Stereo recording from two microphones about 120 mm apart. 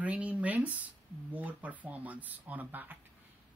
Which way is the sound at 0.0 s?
10° right (ahead or behind).